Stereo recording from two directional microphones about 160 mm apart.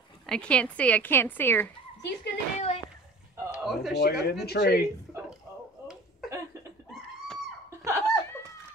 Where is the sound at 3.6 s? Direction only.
Centre (ahead or behind).